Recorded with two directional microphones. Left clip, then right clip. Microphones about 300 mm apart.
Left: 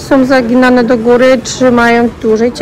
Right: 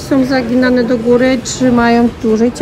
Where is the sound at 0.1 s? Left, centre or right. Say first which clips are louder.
Left 5 dB; centre.